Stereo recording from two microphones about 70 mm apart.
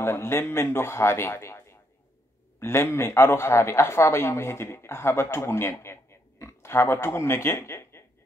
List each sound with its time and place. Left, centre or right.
0.0 s speech: left